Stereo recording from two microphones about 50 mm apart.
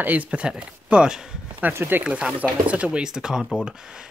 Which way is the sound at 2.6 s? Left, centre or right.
Right.